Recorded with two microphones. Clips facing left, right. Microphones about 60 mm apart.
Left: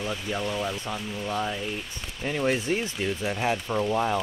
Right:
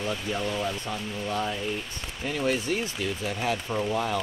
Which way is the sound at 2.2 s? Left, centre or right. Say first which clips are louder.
Left 1 dB; centre.